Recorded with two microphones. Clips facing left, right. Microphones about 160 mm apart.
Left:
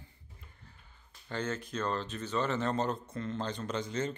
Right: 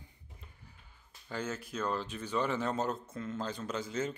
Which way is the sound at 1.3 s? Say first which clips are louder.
Left 2 dB; 5° right (ahead or behind).